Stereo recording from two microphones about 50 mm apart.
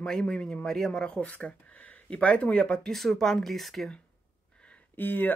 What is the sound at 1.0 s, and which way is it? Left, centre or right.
Speech, left.